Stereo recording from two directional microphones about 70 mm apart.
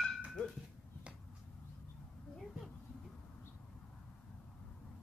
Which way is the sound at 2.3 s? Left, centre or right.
Centre.